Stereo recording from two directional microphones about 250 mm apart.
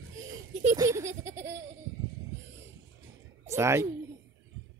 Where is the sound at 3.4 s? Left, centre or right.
Centre.